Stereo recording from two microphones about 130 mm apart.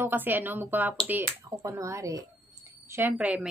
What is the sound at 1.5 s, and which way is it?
A woman's voice, 25° right (ahead or behind).